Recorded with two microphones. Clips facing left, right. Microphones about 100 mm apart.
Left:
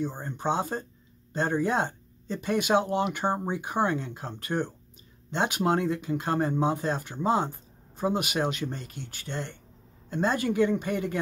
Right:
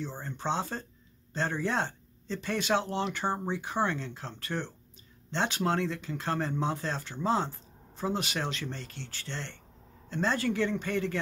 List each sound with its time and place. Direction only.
0.0 s speech: 15° left (ahead or behind)